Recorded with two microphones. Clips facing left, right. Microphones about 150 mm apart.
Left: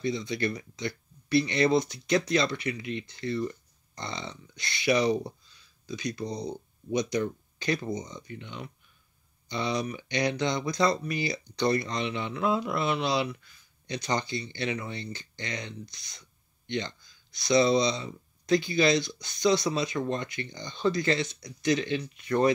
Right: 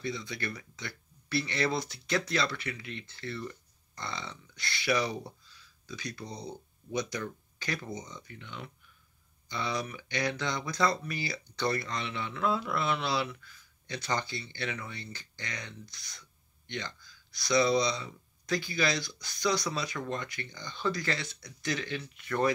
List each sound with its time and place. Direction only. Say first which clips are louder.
0.0 s speech: left 7 dB; 20° left (ahead or behind)